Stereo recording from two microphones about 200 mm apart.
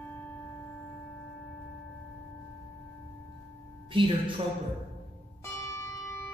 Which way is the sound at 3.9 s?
25° right (ahead or behind).